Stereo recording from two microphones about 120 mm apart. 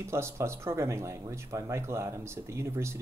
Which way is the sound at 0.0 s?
25° right (ahead or behind).